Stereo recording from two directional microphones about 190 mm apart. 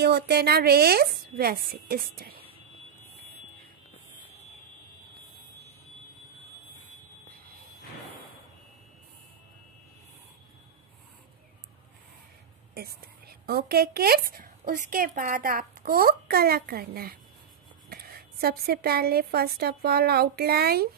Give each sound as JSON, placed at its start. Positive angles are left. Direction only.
{"t": 0.0, "sound": "speech", "side_deg": -55}
{"t": 12.7, "sound": "a woman's voice", "side_deg": -55}